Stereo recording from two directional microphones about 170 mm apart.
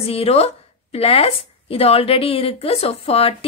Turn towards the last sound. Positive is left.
turn(degrees=35)  # may be behind; listen again after turning